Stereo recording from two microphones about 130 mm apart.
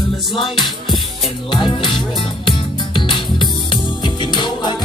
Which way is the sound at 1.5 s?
40° left (ahead or behind).